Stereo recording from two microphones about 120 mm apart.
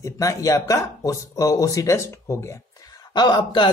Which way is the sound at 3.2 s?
40° left (ahead or behind).